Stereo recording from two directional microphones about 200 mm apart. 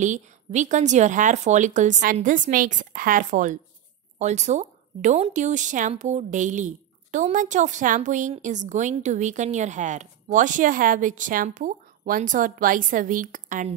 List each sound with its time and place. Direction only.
0.0 s speech: 35° right (ahead or behind)